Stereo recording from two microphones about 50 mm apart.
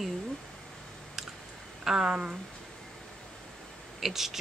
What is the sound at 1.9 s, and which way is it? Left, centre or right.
Speech, centre.